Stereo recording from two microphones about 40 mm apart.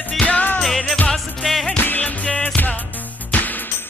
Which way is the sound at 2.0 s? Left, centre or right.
Left.